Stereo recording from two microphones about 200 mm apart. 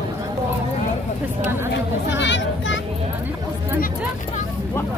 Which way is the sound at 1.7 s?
60° left (ahead or behind).